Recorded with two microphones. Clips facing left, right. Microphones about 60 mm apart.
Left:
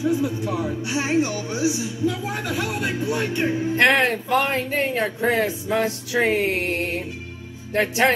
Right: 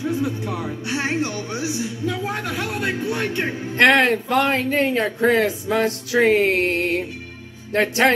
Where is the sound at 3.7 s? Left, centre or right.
Right.